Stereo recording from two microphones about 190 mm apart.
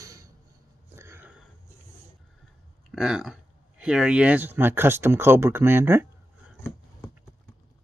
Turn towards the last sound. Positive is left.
turn(degrees=-10)  # may be behind; listen again after turning